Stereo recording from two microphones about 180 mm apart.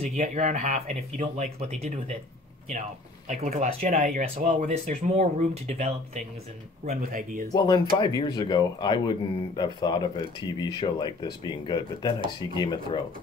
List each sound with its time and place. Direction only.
0.0 s speech: 40° right (ahead or behind)
3.3 s speech: 35° right (ahead or behind)
6.9 s speech: 50° right (ahead or behind)
7.5 s speech: 20° left (ahead or behind)